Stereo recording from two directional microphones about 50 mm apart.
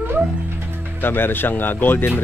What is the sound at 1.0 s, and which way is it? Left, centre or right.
Speech, left.